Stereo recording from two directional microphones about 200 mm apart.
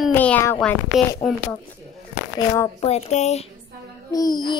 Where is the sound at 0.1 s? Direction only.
10° left (ahead or behind).